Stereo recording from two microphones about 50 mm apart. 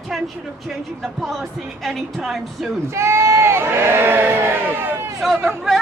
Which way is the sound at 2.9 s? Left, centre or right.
Right.